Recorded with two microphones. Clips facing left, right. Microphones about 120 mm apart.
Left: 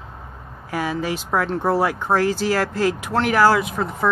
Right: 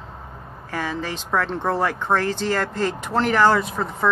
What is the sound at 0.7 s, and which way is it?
Speech, 10° left (ahead or behind).